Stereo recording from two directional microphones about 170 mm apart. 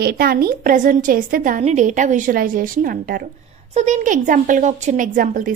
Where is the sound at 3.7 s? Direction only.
45° right (ahead or behind).